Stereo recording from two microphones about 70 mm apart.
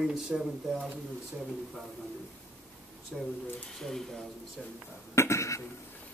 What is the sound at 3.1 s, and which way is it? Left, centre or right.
Speech, centre.